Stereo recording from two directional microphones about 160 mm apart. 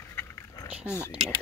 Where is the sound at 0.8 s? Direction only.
10° right (ahead or behind).